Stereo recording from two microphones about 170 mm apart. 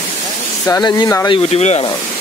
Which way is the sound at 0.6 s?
20° left (ahead or behind).